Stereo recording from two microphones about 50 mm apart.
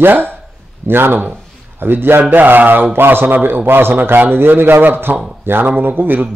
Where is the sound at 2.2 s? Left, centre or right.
Right.